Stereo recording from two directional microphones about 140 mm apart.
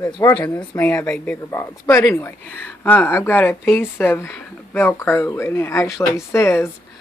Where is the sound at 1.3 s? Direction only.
20° left (ahead or behind).